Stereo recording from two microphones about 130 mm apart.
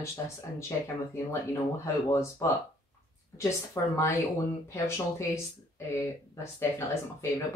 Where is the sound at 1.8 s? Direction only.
20° left (ahead or behind).